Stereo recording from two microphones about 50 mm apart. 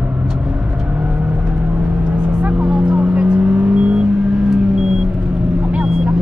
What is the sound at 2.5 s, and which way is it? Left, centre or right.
Vehicle, centre.